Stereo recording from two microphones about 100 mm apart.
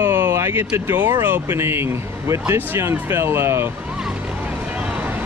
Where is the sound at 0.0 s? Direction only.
20° right (ahead or behind).